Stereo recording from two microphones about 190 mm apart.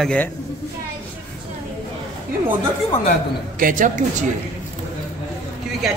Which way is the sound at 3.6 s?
45° right (ahead or behind).